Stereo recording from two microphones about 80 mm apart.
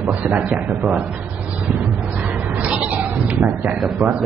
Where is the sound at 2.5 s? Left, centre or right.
Centre.